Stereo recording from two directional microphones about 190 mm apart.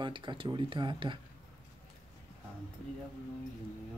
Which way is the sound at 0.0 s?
25° right (ahead or behind).